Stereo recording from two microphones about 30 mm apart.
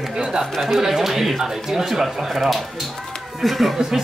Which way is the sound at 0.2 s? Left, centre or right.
Right.